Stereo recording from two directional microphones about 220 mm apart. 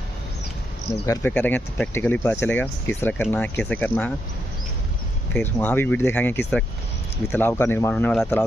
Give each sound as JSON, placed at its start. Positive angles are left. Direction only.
{"t": 1.0, "sound": "speech", "side_deg": 10}
{"t": 5.3, "sound": "speech", "side_deg": 10}